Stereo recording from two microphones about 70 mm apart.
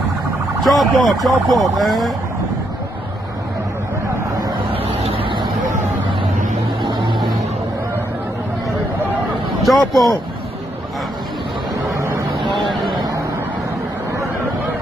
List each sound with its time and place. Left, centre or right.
0.7 s speech: centre
6.8 s vehicle: right
9.6 s a man's voice: centre
11.9 s vehicle: right